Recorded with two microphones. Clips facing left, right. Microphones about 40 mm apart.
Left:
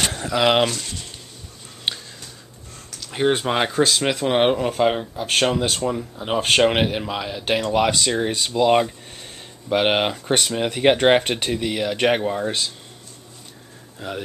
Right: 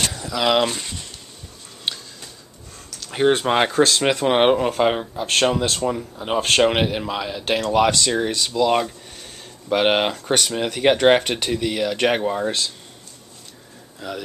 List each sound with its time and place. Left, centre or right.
0.1 s a sound: left
0.4 s speech: centre
0.7 s speech: centre
1.9 s a sound: centre
3.0 s speech: centre
5.2 s speech: centre
8.3 s speech: left
9.7 s speech: centre
10.1 s speech: centre
14.0 s speech: left